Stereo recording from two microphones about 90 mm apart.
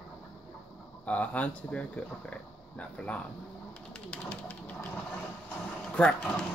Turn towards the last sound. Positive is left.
turn(degrees=15)  # may be behind; listen again after turning